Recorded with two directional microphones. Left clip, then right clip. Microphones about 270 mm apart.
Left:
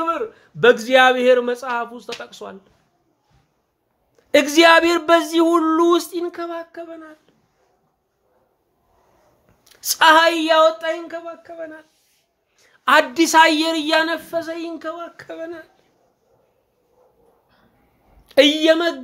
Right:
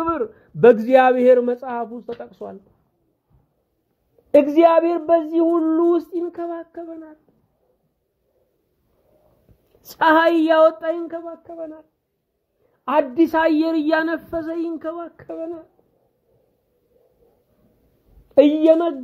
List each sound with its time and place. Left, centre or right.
0.6 s speech: centre
4.3 s speech: centre
6.3 s speech: centre
9.8 s a woman's voice: centre
12.8 s a woman's voice: centre; by 15.3 s right
15.3 s speech: centre
18.3 s speech: centre